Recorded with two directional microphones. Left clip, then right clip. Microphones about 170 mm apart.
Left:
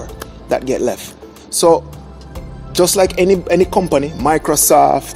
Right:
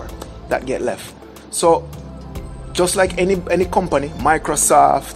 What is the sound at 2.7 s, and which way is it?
Speech, 35° left (ahead or behind).